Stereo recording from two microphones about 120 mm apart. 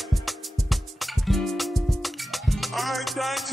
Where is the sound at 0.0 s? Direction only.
Centre (ahead or behind).